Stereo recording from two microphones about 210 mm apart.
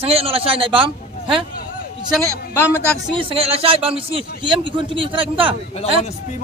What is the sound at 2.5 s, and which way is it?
Speech, 10° left (ahead or behind).